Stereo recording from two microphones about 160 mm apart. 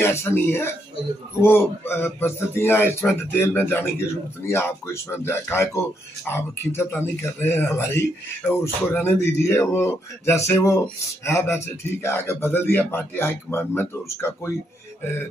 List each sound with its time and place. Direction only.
0.0 s speech: 15° left (ahead or behind)